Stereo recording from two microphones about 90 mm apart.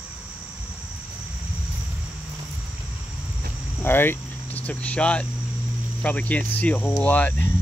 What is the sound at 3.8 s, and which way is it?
Speech, 25° left (ahead or behind).